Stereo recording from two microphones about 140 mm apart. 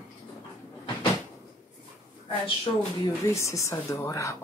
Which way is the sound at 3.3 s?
20° left (ahead or behind).